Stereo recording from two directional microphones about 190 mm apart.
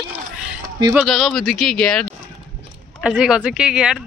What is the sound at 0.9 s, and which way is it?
Speech, centre (ahead or behind).